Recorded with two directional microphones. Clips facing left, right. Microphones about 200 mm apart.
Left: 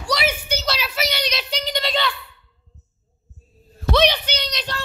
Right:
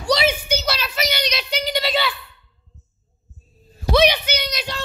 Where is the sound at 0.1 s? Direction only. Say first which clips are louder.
Right 4 dB; 25° right (ahead or behind).